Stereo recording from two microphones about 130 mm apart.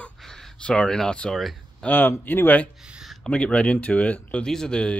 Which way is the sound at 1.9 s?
15° left (ahead or behind).